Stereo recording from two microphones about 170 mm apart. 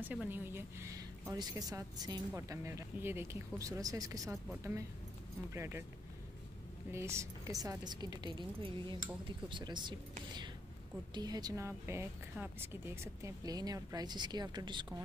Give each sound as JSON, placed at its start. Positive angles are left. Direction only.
{"t": 0.0, "sound": "speech", "side_deg": -10}
{"t": 5.5, "sound": "speech", "side_deg": -15}
{"t": 6.9, "sound": "speech", "side_deg": -15}
{"t": 11.1, "sound": "speech", "side_deg": -25}